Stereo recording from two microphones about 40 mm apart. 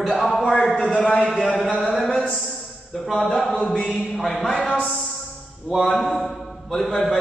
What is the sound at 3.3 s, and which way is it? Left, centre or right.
A man's voice, centre.